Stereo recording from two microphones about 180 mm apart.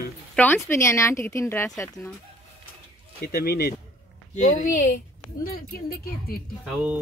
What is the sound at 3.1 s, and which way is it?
Speech, 60° left (ahead or behind).